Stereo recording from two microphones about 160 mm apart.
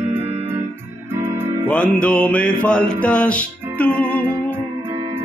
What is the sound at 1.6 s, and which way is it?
Music, 10° left (ahead or behind).